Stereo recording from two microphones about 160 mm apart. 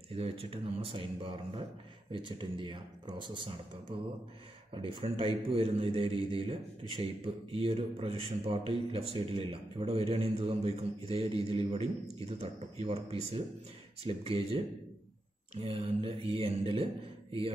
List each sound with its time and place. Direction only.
0.1 s speech: 35° right (ahead or behind)
15.6 s speech: 35° right (ahead or behind)